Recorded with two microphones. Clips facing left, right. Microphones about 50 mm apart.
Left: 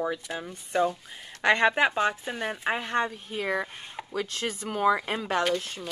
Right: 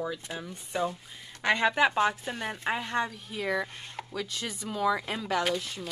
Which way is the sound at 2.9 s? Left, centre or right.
Left.